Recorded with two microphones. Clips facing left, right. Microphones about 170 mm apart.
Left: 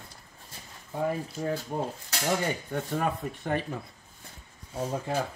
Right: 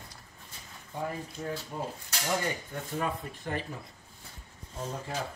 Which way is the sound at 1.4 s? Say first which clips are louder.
Left 4 dB; 35° left (ahead or behind).